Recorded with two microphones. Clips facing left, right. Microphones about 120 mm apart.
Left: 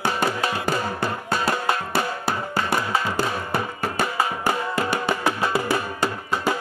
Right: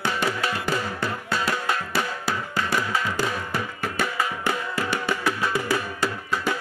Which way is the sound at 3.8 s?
40° left (ahead or behind).